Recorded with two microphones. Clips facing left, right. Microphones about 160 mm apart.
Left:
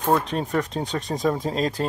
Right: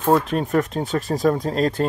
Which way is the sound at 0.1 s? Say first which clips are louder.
Right 4 dB; 5° right (ahead or behind).